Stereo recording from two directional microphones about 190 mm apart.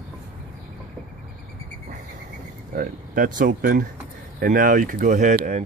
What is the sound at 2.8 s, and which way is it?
Speech, 45° right (ahead or behind).